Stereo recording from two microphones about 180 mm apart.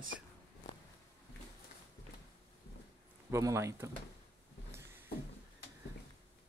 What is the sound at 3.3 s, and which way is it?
Speech, 15° right (ahead or behind).